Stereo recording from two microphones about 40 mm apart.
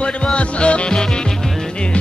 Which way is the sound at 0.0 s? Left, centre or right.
Left.